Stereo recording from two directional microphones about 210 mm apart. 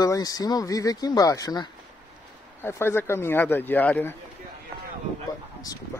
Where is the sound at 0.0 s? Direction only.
15° left (ahead or behind).